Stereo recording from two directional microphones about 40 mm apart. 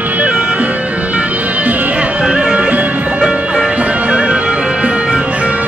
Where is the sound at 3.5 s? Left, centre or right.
Right.